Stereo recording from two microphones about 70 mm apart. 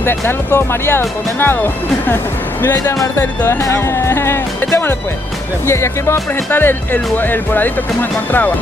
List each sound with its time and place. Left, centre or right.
0.0 s speech: left
3.6 s speech: left
5.7 s speech: left
6.5 s speech: left